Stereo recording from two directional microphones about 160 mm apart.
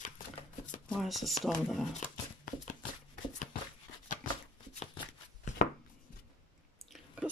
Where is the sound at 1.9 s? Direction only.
50° left (ahead or behind).